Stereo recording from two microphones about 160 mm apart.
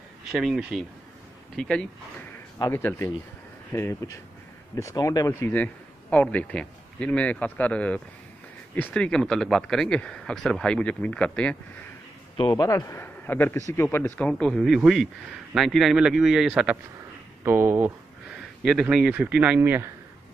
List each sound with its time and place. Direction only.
0.3 s a man's voice: centre (ahead or behind)
12.4 s a man's voice: 25° left (ahead or behind); by 19.9 s 15° right (ahead or behind)